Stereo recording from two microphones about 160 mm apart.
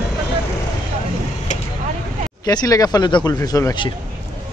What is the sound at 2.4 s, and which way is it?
Speech, 25° left (ahead or behind).